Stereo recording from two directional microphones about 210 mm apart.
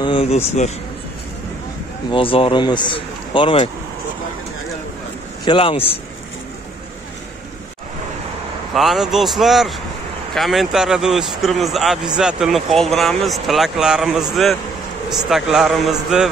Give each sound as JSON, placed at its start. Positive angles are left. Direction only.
{"t": 0.0, "sound": "speech", "side_deg": 25}
{"t": 2.0, "sound": "speech", "side_deg": 25}
{"t": 5.4, "sound": "speech", "side_deg": 25}
{"t": 8.7, "sound": "speech", "side_deg": 0}